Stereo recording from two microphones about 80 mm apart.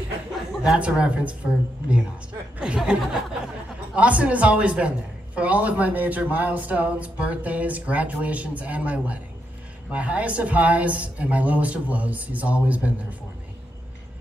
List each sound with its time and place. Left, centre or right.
0.7 s a man's voice: centre